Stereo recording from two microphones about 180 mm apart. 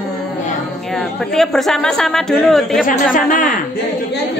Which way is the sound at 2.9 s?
50° left (ahead or behind).